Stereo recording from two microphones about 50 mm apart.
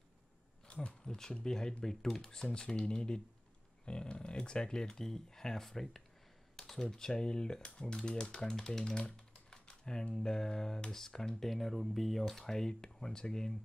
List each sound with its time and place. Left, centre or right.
0.7 s speech: left
9.1 s typing: centre
10.1 s speech: centre